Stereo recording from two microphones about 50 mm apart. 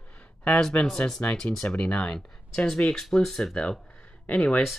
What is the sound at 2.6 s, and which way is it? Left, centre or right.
Speech, centre.